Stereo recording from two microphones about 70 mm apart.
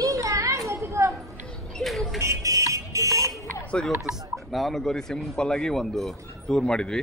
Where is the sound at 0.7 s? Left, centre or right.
Right.